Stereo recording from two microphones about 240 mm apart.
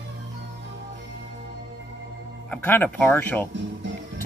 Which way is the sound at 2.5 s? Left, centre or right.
Centre.